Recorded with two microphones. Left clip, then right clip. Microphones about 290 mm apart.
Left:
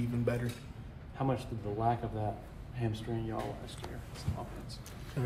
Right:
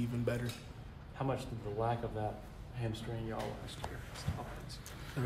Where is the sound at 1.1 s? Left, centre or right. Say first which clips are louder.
Left 3 dB; left.